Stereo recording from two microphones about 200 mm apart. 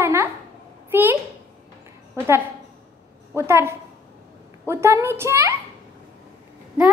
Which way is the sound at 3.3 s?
10° right (ahead or behind).